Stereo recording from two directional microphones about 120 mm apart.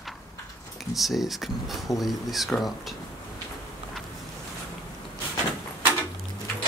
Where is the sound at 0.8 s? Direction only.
Centre (ahead or behind).